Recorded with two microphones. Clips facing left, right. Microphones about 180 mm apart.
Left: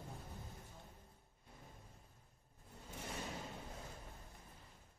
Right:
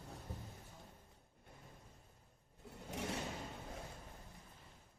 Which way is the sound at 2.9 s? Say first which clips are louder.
Right 6 dB; 80° right.